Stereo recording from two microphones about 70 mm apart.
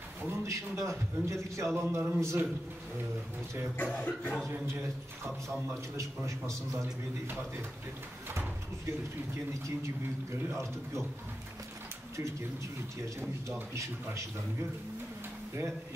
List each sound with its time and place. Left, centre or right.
0.3 s a man's voice: right
3.7 s speech: left
5.9 s a man's voice: right
9.3 s a man's voice: right
13.7 s a man's voice: right